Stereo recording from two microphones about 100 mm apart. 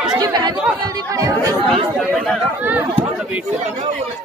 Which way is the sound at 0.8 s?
35° right (ahead or behind).